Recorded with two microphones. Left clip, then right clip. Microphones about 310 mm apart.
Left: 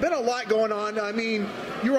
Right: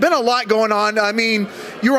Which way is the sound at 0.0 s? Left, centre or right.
Right.